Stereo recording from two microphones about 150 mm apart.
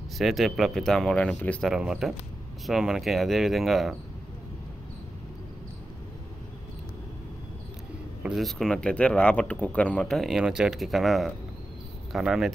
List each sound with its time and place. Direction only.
0.2 s speech: centre (ahead or behind)
1.7 s speech: 5° right (ahead or behind)
8.2 s speech: centre (ahead or behind)